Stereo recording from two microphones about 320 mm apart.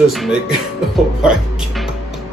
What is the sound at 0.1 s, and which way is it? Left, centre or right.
Speech, centre.